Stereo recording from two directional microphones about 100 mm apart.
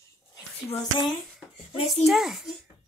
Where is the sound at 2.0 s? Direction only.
Centre (ahead or behind).